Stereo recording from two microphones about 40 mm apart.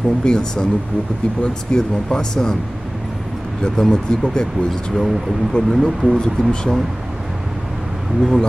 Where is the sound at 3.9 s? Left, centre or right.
Left.